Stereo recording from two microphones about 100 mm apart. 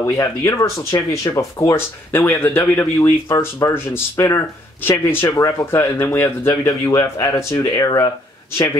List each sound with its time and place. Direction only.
0.0 s speech: 30° left (ahead or behind)
1.7 s speech: 25° left (ahead or behind)
3.0 s speech: 30° left (ahead or behind)
6.7 s speech: 35° left (ahead or behind)
7.7 s speech: 40° left (ahead or behind)